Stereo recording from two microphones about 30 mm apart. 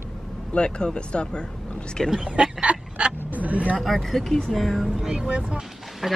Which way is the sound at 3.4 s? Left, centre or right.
Right.